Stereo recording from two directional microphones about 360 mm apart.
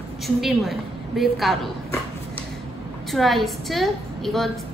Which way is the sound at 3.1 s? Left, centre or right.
Centre.